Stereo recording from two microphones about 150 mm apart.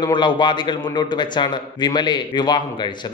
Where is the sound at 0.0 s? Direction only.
30° left (ahead or behind).